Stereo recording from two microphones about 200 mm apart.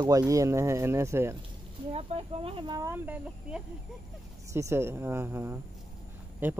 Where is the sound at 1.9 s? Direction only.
30° right (ahead or behind).